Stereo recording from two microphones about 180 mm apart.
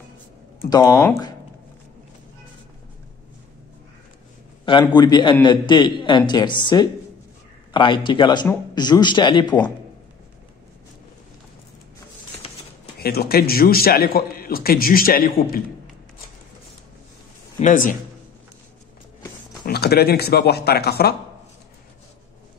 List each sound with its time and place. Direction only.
0.7 s a man's voice: 20° left (ahead or behind)
0.9 s speech: 10° left (ahead or behind)
4.6 s a man's voice: 25° left (ahead or behind)
13.0 s a man's voice: 60° left (ahead or behind)
17.6 s speech: 45° left (ahead or behind)
19.6 s a man's voice: 60° left (ahead or behind)